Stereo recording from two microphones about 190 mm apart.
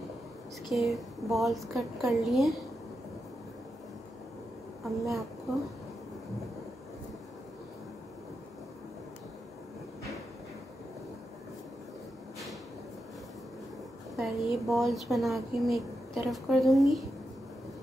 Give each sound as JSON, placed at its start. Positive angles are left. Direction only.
{"t": 0.7, "sound": "speech", "side_deg": 0}
{"t": 4.8, "sound": "speech", "side_deg": 0}
{"t": 14.1, "sound": "speech", "side_deg": 0}